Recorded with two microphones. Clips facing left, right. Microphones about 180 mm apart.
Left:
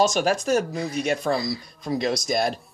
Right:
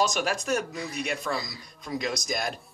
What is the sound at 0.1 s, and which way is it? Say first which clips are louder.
Speech: left 6 dB; 30° left (ahead or behind).